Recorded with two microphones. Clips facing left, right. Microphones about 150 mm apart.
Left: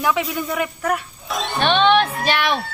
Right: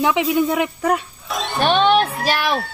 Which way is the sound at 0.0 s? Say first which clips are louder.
Right 4 dB; 25° right (ahead or behind).